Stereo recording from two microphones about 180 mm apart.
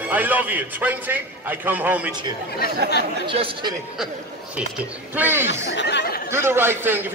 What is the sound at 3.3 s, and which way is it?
Speech, 30° right (ahead or behind).